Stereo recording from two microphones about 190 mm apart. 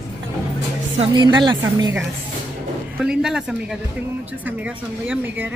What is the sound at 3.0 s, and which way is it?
Speech, 5° right (ahead or behind).